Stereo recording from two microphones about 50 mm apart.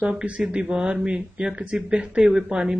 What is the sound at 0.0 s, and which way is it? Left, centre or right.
Speech, right.